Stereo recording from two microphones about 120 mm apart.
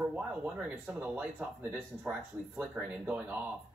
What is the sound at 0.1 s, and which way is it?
Speech, 10° right (ahead or behind).